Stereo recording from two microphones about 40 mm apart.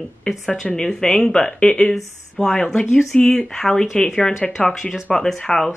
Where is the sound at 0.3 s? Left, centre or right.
Left.